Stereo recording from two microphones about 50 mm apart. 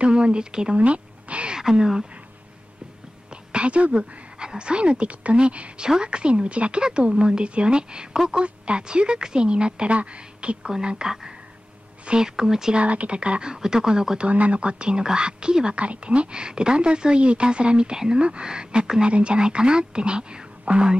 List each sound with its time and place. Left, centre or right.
0.0 s speech: right
0.7 s a sound: right
1.6 s speech: centre
3.5 s speech: right
12.8 s speech: right
14.3 s speech: right